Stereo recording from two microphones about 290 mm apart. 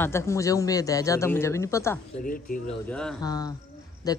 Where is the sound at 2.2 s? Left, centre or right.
Left.